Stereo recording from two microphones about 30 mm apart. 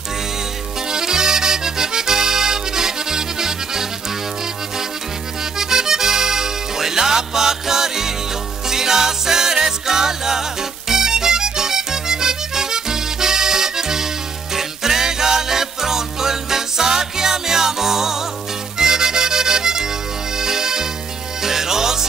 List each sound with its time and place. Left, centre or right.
0.8 s accordion: right
5.4 s music: centre